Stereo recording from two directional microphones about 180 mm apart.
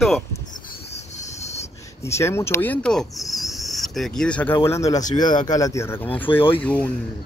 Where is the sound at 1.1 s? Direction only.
40° left (ahead or behind).